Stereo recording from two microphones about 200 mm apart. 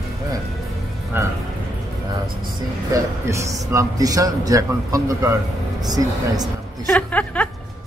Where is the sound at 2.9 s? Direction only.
15° right (ahead or behind).